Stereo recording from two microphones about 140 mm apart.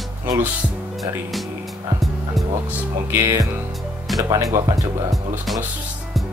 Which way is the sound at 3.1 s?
20° right (ahead or behind).